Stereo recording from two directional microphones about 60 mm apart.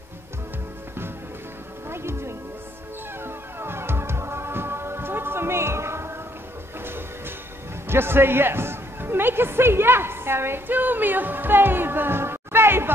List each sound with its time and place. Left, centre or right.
1.9 s music: right
7.9 s speech: right